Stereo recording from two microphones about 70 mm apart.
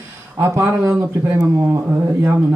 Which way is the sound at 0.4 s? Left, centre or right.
Right.